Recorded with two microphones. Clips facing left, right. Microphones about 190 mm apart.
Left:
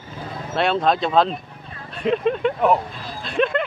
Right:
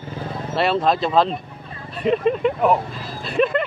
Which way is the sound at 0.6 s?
Centre (ahead or behind).